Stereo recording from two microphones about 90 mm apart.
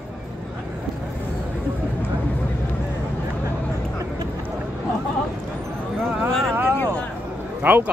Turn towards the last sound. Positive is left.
turn(degrees=-20)  # may be behind; listen again after turning